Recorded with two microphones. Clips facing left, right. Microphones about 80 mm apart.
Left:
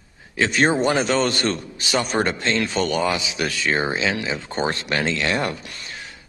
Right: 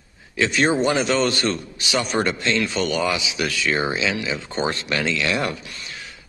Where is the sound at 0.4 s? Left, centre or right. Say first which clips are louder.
Even; left.